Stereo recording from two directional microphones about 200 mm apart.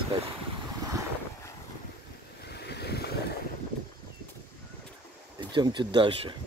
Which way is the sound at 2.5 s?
55° left (ahead or behind).